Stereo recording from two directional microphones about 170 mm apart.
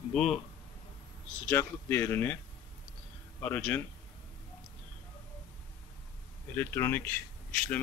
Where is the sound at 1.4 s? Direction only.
15° left (ahead or behind).